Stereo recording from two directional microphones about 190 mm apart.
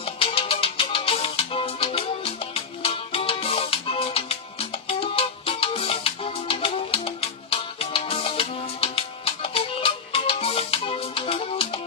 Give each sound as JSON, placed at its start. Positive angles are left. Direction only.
{"t": 0.2, "sound": "music", "side_deg": 30}